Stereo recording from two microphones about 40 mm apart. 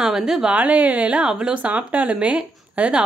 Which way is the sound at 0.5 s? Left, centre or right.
Right.